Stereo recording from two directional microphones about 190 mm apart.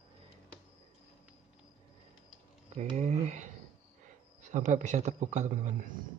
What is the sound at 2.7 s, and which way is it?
A man's voice, 35° right (ahead or behind).